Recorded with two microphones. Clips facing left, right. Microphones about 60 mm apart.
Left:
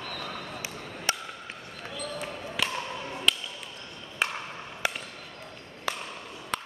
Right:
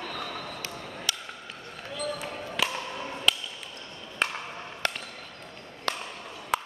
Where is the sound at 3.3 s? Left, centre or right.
Centre.